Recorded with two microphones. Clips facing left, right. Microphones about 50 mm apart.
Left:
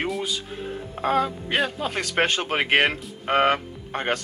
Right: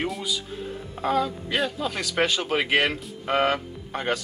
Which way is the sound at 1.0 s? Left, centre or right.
Left.